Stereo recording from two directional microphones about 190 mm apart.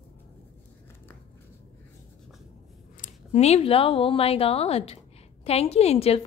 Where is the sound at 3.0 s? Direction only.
35° left (ahead or behind).